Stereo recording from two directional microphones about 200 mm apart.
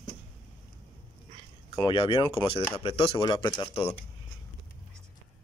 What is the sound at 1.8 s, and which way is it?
Speech, 25° left (ahead or behind).